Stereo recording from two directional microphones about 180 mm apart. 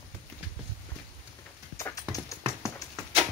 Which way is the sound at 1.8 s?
15° left (ahead or behind).